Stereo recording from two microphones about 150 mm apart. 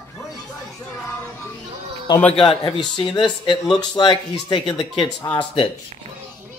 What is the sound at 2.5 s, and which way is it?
Speech, 30° left (ahead or behind).